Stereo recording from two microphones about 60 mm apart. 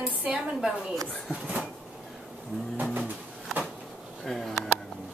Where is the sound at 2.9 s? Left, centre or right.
Right.